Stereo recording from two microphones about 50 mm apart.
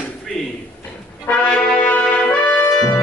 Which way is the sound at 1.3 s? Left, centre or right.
Left.